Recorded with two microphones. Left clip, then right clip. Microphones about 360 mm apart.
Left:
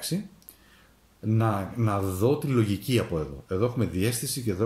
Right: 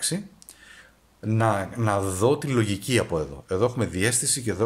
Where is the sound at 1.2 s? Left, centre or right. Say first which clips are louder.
Right 4 dB; centre.